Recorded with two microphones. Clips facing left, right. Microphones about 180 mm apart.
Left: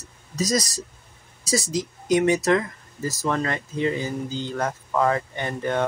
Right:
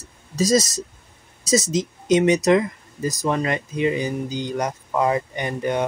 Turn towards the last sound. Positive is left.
turn(degrees=-15)  # may be behind; listen again after turning